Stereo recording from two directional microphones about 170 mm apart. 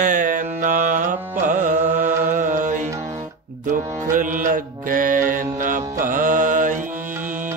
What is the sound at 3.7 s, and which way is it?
Mantra, 50° right (ahead or behind).